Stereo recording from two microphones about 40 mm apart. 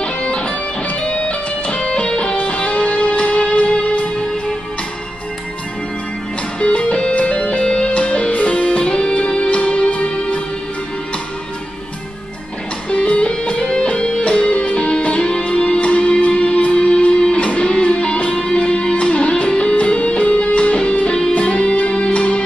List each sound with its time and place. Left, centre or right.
0.0 s music: left
6.6 s music: left
12.9 s music: left